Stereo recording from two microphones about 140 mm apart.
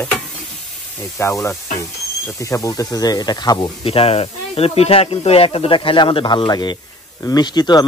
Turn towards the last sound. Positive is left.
turn(degrees=30)  # may be behind; listen again after turning